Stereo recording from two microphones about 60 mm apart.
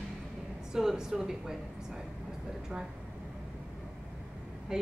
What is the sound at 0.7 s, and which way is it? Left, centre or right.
Speech, centre.